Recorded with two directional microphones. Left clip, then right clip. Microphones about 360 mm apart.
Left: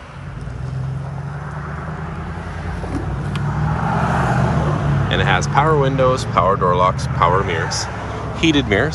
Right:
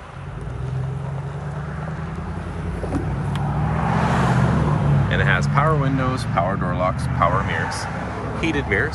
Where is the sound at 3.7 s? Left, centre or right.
Right.